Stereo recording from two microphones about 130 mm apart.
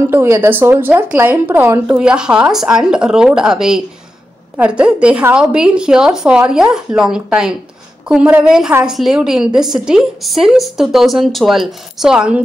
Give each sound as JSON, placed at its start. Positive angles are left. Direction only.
{"t": 0.1, "sound": "a woman's voice", "side_deg": -15}
{"t": 2.0, "sound": "a woman's voice", "side_deg": -5}